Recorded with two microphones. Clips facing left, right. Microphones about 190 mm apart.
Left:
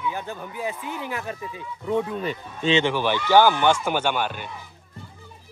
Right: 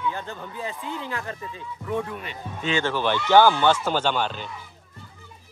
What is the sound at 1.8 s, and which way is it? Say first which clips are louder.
Speech: left 5 dB; 25° left (ahead or behind).